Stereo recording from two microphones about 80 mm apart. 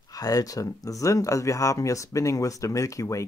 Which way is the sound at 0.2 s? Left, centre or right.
Left.